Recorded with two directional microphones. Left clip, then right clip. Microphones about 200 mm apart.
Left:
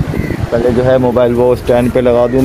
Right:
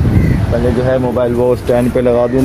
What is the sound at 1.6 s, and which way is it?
Speech, 10° left (ahead or behind).